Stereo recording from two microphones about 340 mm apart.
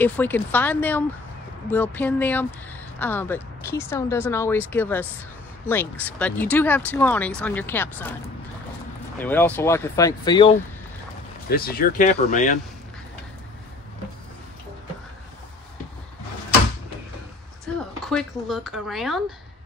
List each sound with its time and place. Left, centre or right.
0.0 s speech: centre
9.2 s speech: centre
11.4 s speech: left
17.7 s speech: centre